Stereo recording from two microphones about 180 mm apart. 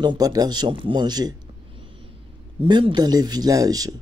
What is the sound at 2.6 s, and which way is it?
Speech, 30° right (ahead or behind).